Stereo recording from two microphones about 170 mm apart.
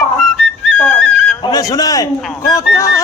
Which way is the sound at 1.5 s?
20° left (ahead or behind).